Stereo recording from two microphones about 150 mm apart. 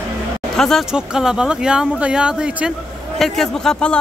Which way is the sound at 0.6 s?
Centre (ahead or behind).